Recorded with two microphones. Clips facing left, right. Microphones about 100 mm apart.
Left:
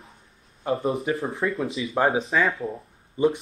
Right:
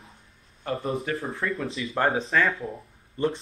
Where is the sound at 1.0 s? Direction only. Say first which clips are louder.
Left 4 dB; 30° left (ahead or behind).